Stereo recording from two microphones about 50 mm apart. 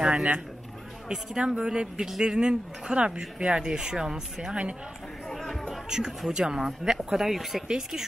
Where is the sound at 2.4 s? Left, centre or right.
Right.